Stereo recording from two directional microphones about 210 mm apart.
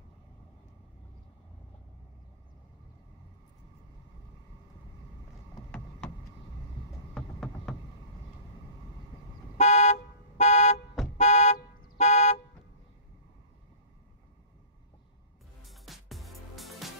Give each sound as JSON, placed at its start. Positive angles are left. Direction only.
{"t": 7.2, "sound": "a sound", "side_deg": 0}
{"t": 9.6, "sound": "car alarm", "side_deg": 35}
{"t": 11.1, "sound": "car", "side_deg": 35}
{"t": 15.6, "sound": "music", "side_deg": 0}